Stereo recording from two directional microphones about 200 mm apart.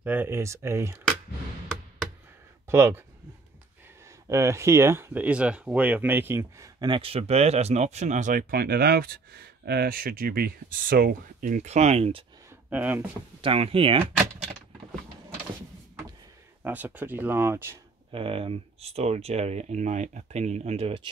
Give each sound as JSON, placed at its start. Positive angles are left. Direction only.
{"t": 0.0, "sound": "speech", "side_deg": -10}
{"t": 2.7, "sound": "speech", "side_deg": -15}
{"t": 4.3, "sound": "speech", "side_deg": -15}
{"t": 12.6, "sound": "speech", "side_deg": -10}
{"t": 13.4, "sound": "speech", "side_deg": -30}
{"t": 16.6, "sound": "speech", "side_deg": -10}
{"t": 18.1, "sound": "speech", "side_deg": -30}